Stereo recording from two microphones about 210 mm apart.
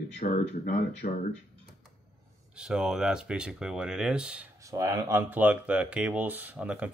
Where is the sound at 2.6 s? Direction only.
5° right (ahead or behind).